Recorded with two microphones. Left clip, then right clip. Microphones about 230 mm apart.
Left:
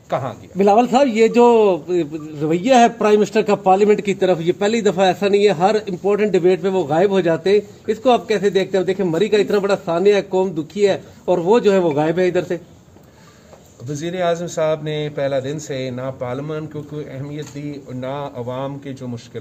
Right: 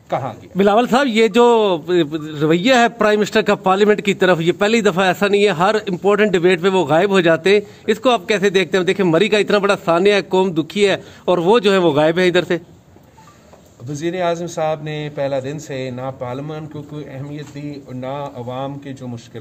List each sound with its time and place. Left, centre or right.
0.1 s a man's voice: centre
0.6 s a man's voice: right
13.9 s a man's voice: centre